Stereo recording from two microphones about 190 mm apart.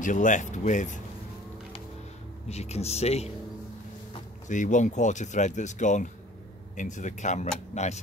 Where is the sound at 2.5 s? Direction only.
35° left (ahead or behind).